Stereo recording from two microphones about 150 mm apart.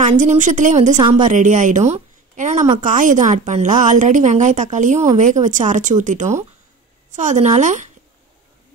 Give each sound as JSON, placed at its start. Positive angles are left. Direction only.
{"t": 0.0, "sound": "a woman's voice", "side_deg": -55}
{"t": 0.9, "sound": "a woman's voice", "side_deg": -30}
{"t": 1.3, "sound": "a woman's voice", "side_deg": -55}